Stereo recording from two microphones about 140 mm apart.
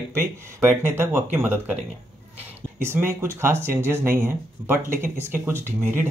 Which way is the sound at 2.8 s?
15° right (ahead or behind).